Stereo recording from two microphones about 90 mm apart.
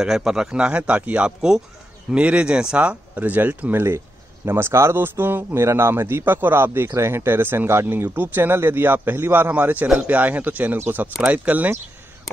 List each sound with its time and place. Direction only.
0.0 s a man's voice: 5° right (ahead or behind)